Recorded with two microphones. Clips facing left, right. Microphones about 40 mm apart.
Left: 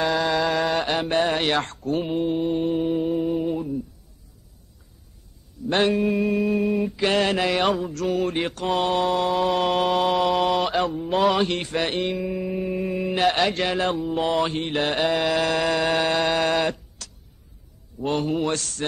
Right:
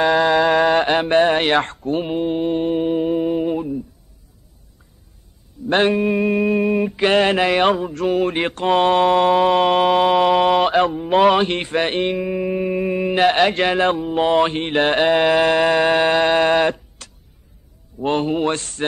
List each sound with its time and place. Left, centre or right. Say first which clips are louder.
0.0 s a sound: right 7 dB; right
5.7 s mantra: right 4 dB; right
5.9 s mantra: right 4 dB; right